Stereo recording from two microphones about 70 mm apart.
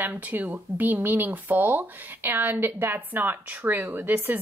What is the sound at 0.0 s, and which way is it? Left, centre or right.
Speech, right.